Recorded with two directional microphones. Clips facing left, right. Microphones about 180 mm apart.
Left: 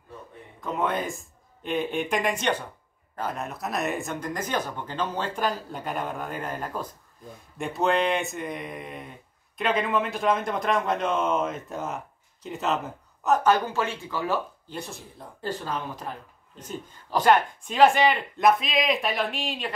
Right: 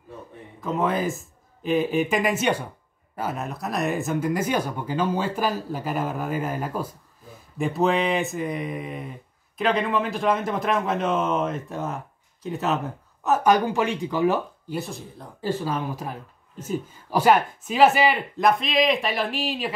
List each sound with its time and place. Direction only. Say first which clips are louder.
0.6 s a man's voice: right 3 dB; centre (ahead or behind)
13.4 s speech: right 3 dB; 10° right (ahead or behind)
14.8 s speech: right 3 dB; centre (ahead or behind)